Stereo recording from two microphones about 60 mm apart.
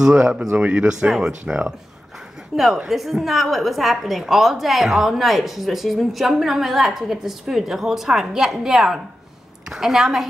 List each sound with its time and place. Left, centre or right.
0.1 s speech: right
2.5 s a woman's voice: centre